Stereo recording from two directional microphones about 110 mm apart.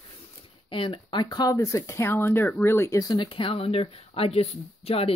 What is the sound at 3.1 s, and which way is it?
Speech, 50° left (ahead or behind).